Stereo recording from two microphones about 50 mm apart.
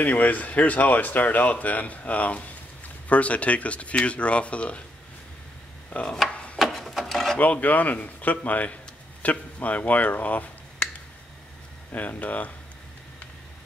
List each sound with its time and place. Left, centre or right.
0.0 s speech: left
5.9 s speech: left
6.3 s wood: left
6.6 s a sound: centre
7.3 s speech: left
11.9 s speech: left